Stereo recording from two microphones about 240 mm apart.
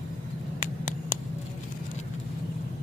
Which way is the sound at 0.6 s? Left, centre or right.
Left.